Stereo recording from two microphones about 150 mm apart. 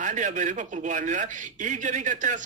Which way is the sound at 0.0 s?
55° right (ahead or behind).